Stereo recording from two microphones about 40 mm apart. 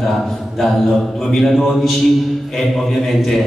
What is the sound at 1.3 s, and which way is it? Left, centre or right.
A man's voice, centre.